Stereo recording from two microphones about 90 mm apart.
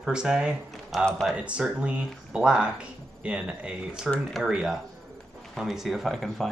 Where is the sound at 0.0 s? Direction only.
10° right (ahead or behind).